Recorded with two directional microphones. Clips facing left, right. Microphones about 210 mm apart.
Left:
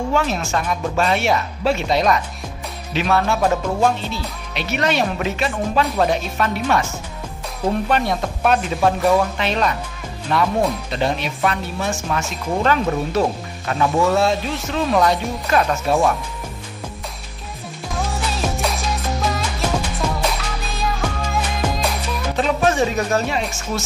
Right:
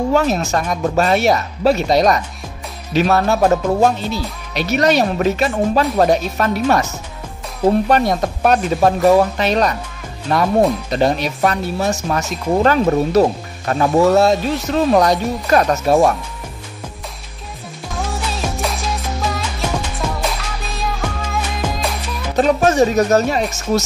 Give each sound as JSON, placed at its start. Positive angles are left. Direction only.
{"t": 0.1, "sound": "speech", "side_deg": -40}
{"t": 7.9, "sound": "speech", "side_deg": -40}
{"t": 17.9, "sound": "music", "side_deg": 0}
{"t": 22.4, "sound": "speech", "side_deg": -45}